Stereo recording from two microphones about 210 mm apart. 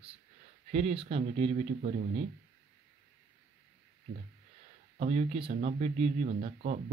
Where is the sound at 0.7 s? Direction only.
30° right (ahead or behind).